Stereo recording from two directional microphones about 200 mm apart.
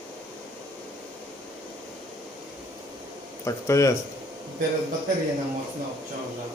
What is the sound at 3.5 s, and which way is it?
Speech, 15° left (ahead or behind).